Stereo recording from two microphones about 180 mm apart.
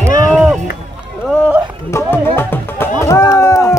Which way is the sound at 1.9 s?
15° left (ahead or behind).